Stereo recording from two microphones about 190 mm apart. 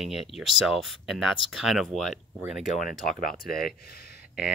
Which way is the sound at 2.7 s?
45° left (ahead or behind).